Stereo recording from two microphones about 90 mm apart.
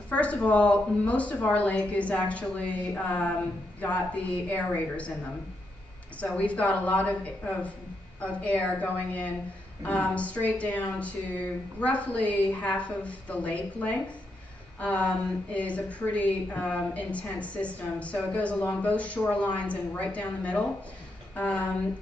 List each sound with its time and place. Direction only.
0.1 s a woman's voice: 15° left (ahead or behind)
6.2 s a woman's voice: 15° left (ahead or behind)